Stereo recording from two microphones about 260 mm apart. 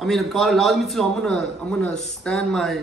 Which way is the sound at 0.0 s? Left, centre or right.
Centre.